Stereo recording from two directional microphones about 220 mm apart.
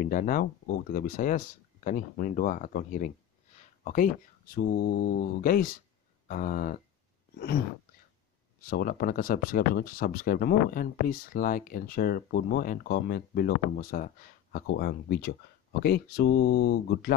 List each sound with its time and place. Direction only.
0.0 s speech: 40° left (ahead or behind)
8.6 s speech: 40° left (ahead or behind)